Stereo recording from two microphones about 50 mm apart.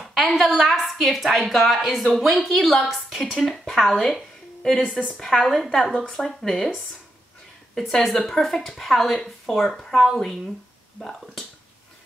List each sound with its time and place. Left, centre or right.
0.0 s a woman's voice: centre